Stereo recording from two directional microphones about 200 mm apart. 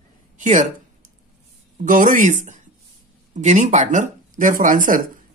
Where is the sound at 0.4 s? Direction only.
40° right (ahead or behind).